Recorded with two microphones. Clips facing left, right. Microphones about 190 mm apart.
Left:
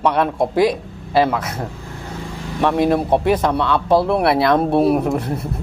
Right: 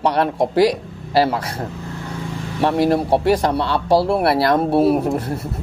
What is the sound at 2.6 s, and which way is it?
Speech, 10° right (ahead or behind).